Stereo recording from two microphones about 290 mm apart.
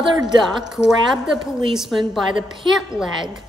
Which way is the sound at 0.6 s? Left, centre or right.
Centre.